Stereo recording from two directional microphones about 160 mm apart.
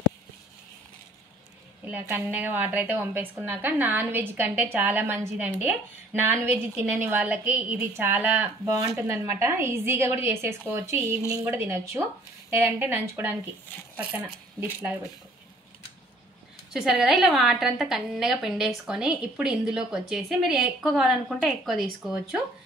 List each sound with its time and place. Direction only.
1.9 s a woman's voice: 10° right (ahead or behind)
16.7 s a woman's voice: centre (ahead or behind)